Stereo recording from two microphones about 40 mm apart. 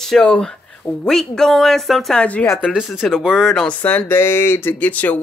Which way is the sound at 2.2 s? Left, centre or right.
Left.